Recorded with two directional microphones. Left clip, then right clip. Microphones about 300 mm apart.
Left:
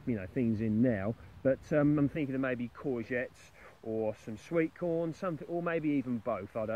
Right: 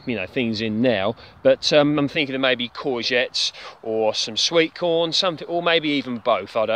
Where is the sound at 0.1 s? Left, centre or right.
Centre.